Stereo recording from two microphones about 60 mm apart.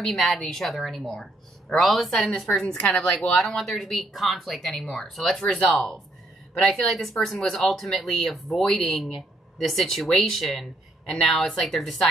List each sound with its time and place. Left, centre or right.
0.0 s a woman's voice: centre
5.4 s speech: centre
6.7 s a woman's voice: centre